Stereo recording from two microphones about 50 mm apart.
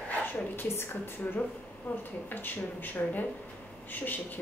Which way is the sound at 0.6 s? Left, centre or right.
Left.